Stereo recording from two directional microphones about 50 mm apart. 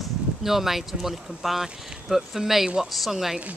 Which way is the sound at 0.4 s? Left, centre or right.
Centre.